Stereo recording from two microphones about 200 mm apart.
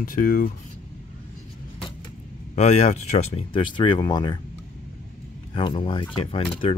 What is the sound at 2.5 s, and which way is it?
Speech, 35° left (ahead or behind).